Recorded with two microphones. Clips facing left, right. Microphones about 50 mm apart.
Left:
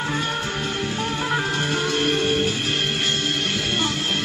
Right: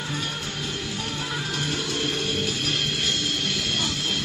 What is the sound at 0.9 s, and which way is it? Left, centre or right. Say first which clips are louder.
Music: left 7 dB; left.